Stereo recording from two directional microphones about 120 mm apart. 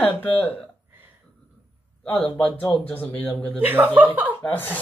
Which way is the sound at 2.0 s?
10° left (ahead or behind).